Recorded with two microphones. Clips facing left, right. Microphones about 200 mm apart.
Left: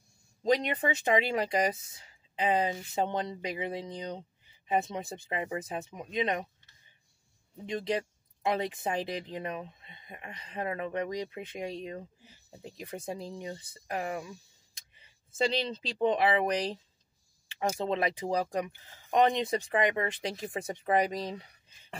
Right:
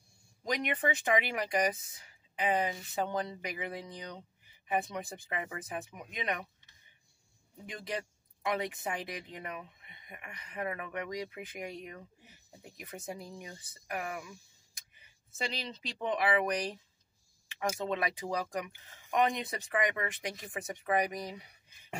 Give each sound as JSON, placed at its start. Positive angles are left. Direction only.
{"t": 0.4, "sound": "speech", "side_deg": 25}
{"t": 7.6, "sound": "speech", "side_deg": 25}